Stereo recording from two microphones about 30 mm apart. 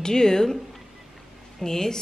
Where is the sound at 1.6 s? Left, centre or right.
Centre.